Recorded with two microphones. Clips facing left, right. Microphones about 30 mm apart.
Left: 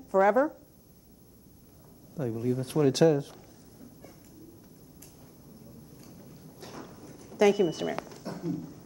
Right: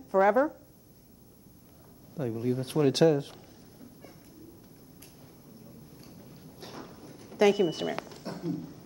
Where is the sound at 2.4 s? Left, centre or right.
Right.